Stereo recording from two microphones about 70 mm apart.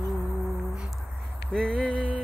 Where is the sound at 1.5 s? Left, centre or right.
Centre.